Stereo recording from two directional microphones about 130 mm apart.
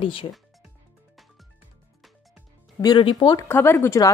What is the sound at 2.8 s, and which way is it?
Speech, 40° left (ahead or behind).